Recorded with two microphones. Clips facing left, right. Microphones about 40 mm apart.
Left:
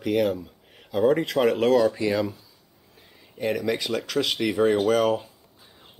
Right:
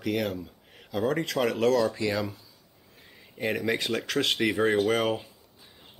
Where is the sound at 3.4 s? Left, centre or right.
Centre.